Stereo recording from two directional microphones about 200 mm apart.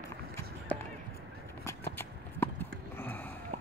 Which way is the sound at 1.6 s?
10° left (ahead or behind).